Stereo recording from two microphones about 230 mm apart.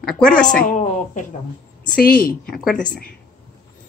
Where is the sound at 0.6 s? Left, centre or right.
Left.